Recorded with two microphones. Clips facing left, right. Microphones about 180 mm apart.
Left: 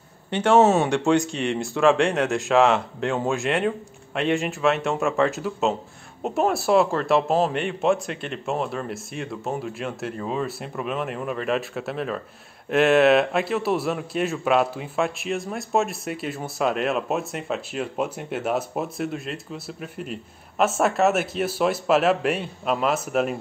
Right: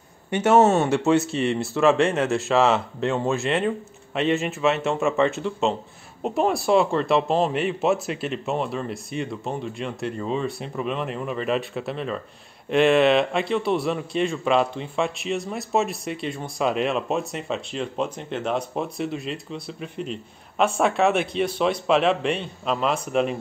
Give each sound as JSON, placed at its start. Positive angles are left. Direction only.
{"t": 0.3, "sound": "a man's voice", "side_deg": -5}